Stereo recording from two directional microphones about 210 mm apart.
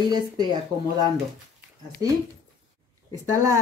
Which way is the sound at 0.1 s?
20° right (ahead or behind).